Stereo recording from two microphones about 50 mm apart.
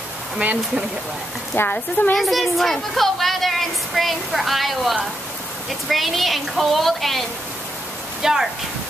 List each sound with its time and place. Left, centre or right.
1.7 s a woman's voice: left
2.1 s a woman's voice: centre
8.2 s speech: centre